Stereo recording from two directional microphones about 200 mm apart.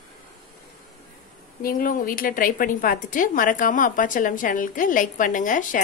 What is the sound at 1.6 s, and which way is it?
A woman's voice, 45° left (ahead or behind).